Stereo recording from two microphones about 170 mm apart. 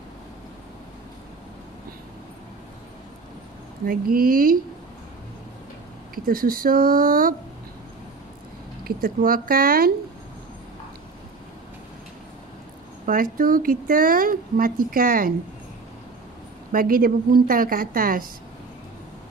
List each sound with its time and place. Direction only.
3.8 s speech: 60° right (ahead or behind)
6.1 s speech: 60° right (ahead or behind)
8.8 s speech: 55° right (ahead or behind)
13.0 s speech: 55° right (ahead or behind)
16.7 s speech: 60° right (ahead or behind)